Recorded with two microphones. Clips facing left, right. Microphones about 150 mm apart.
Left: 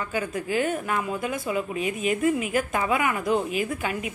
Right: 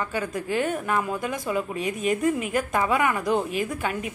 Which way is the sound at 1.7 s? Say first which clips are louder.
Even; 40° right (ahead or behind).